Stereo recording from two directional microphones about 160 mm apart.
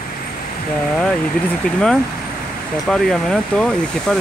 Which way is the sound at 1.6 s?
5° left (ahead or behind).